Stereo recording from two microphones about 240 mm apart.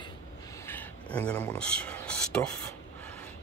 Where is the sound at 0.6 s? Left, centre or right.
Centre.